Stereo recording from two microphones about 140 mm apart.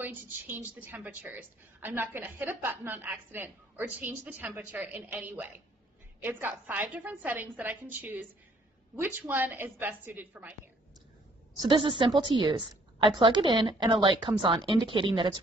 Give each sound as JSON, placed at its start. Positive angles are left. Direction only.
{"t": 0.0, "sound": "a woman's voice", "side_deg": -15}
{"t": 11.6, "sound": "a woman's voice", "side_deg": -35}